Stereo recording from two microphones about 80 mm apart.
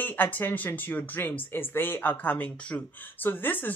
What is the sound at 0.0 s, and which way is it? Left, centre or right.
Speech, left.